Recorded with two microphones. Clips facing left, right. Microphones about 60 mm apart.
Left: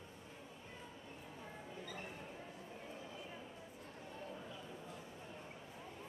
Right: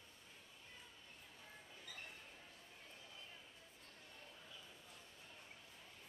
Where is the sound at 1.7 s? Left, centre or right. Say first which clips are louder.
Left 7 dB; centre.